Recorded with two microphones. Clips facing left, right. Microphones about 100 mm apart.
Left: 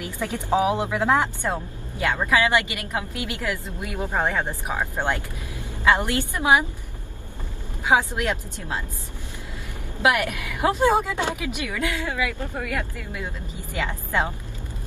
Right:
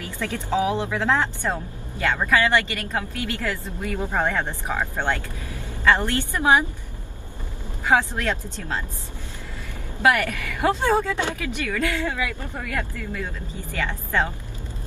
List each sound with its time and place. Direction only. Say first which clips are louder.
0.0 s a woman's voice: left 1 dB; 15° left (ahead or behind)
7.8 s a woman's voice: even; 15° left (ahead or behind)
10.0 s a woman's voice: right 1 dB; 15° left (ahead or behind)